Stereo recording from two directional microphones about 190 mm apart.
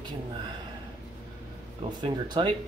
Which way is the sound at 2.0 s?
25° right (ahead or behind).